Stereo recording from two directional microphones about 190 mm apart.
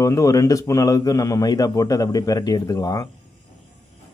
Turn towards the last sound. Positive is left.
turn(degrees=20)  # may be behind; listen again after turning